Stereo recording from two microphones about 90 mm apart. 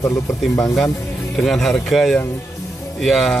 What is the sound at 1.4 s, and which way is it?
Speech, 5° left (ahead or behind).